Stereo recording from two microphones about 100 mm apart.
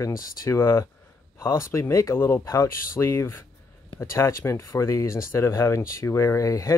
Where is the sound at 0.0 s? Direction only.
30° left (ahead or behind).